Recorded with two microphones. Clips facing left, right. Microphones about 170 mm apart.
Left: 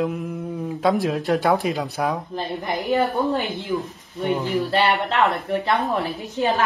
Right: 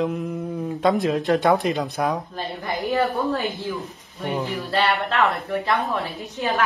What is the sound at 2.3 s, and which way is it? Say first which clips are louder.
Speech: left 2 dB; 20° left (ahead or behind).